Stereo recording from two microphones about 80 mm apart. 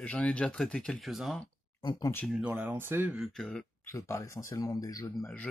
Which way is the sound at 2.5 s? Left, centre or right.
Right.